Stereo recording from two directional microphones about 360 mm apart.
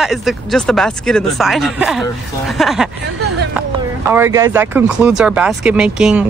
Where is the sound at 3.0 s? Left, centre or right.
Right.